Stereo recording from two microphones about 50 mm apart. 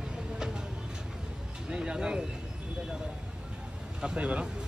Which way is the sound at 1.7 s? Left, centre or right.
Centre.